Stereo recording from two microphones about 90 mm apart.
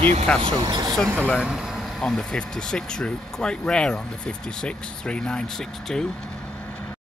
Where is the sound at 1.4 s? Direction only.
5° right (ahead or behind).